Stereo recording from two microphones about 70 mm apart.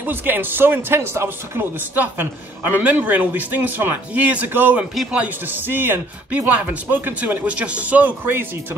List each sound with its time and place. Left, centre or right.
0.0 s speech: right